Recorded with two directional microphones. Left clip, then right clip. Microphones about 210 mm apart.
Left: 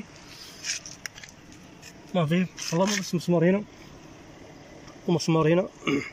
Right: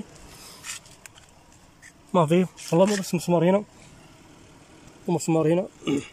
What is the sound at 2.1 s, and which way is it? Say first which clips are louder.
Speech: right 6 dB; 10° right (ahead or behind).